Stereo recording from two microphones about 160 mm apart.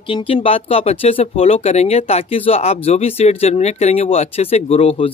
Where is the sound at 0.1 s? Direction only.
35° left (ahead or behind).